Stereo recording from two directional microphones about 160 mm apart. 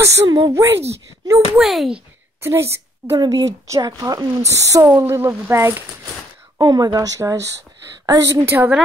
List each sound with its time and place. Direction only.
0.0 s a woman's voice: 25° right (ahead or behind)
1.6 s a child's voice: centre (ahead or behind)
2.4 s a woman's voice: 15° right (ahead or behind)